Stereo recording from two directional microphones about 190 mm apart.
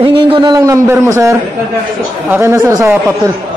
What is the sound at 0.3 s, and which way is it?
Speech, 25° right (ahead or behind).